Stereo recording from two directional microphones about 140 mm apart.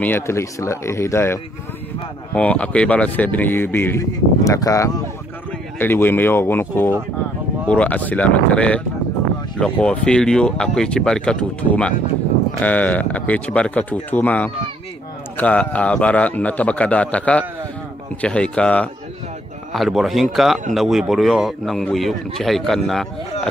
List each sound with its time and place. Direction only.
0.0 s speech: 15° left (ahead or behind)
12.5 s speech: 10° left (ahead or behind)